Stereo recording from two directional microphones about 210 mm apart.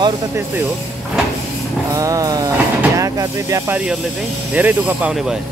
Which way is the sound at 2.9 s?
15° right (ahead or behind).